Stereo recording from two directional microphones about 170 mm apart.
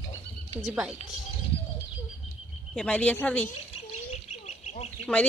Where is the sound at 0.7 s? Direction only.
5° right (ahead or behind).